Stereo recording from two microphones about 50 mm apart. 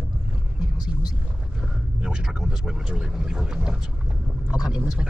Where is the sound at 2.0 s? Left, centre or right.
Centre.